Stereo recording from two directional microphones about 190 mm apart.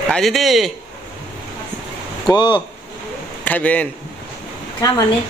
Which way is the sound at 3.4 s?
10° left (ahead or behind).